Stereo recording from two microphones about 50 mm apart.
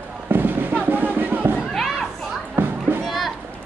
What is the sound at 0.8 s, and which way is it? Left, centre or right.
Music, right.